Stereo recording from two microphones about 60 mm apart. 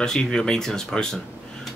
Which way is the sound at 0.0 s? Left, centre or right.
Centre.